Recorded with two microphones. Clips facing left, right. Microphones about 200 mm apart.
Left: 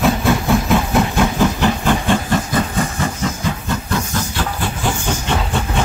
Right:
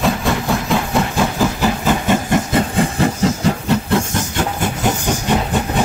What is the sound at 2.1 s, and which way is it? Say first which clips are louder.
Hiss: right 2 dB; 20° right (ahead or behind).